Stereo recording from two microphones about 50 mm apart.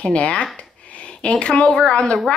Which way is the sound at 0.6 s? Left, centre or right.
Left.